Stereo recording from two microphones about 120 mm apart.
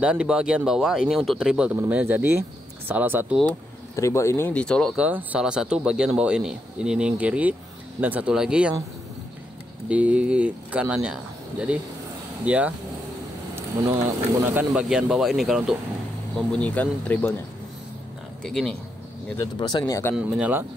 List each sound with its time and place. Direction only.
0.0 s speech: 10° right (ahead or behind)
3.9 s speech: 25° left (ahead or behind); by 4.9 s 5° left (ahead or behind)
4.9 s speech: 10° right (ahead or behind)
9.8 s speech: 10° right (ahead or behind)
12.4 s speech: 10° right (ahead or behind)
14.7 s speech: 5° right (ahead or behind)
16.3 s speech: 10° left (ahead or behind)
18.4 s speech: 5° left (ahead or behind)
19.4 s speech: 35° left (ahead or behind)
20.2 s speech: 10° right (ahead or behind)